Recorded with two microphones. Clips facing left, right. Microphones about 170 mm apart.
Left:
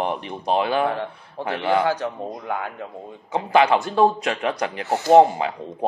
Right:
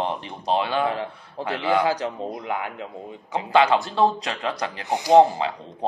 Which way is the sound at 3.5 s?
15° left (ahead or behind).